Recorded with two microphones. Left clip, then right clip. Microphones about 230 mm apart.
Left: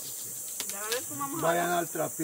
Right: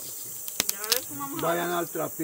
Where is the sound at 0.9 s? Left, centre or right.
Right.